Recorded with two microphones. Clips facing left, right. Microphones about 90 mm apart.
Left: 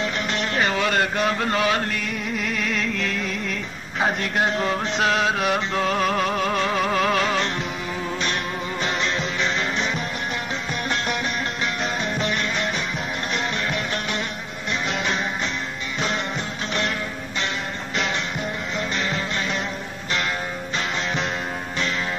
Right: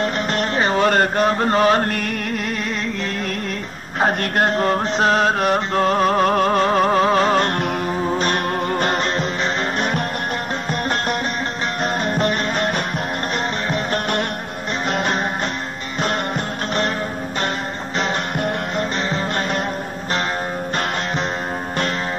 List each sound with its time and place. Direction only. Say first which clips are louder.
0.0 s music: right 5 dB; 45° right (ahead or behind)
14.9 s music: right 6 dB; 45° right (ahead or behind)